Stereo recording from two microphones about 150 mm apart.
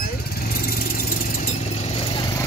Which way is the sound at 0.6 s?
75° left (ahead or behind).